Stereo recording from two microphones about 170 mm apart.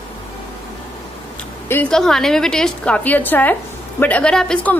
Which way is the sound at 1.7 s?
5° left (ahead or behind).